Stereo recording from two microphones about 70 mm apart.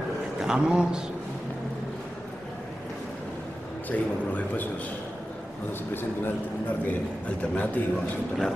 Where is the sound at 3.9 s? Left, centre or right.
Left.